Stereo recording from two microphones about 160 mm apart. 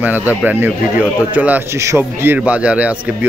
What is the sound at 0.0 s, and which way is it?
A man's voice, 10° right (ahead or behind).